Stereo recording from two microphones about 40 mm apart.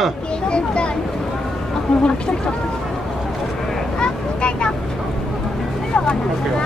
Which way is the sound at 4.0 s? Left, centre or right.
Left.